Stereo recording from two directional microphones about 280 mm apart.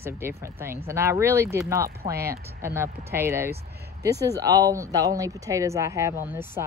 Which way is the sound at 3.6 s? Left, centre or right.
Right.